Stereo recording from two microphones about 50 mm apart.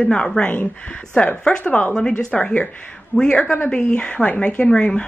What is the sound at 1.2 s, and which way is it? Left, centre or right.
Speech, left.